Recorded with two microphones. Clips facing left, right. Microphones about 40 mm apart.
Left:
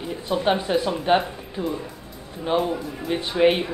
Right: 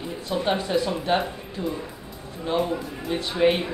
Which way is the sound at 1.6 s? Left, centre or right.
Centre.